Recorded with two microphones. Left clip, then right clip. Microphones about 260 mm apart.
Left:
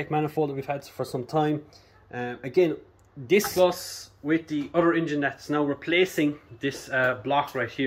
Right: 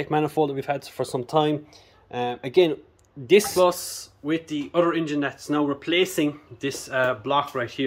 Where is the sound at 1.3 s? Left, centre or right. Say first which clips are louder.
Right 3 dB; right.